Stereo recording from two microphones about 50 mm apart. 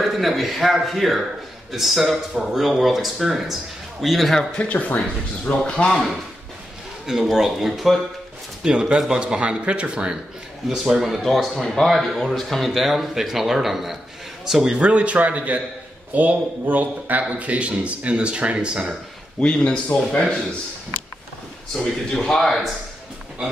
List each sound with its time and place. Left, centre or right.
0.1 s speech: centre
4.6 s speech: left
5.6 s speech: centre
7.1 s speech: centre
8.6 s speech: centre
10.7 s speech: centre
11.2 s a man's voice: centre
19.4 s speech: left
21.7 s speech: centre